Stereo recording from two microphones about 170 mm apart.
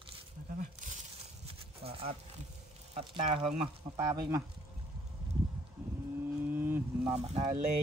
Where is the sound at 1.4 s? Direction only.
35° right (ahead or behind).